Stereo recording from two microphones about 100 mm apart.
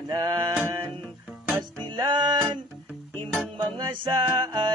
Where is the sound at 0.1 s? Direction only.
50° right (ahead or behind).